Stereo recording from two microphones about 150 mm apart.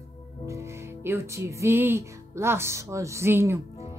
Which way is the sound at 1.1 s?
20° right (ahead or behind).